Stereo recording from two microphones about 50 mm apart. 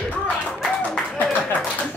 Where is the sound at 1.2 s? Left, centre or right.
Left.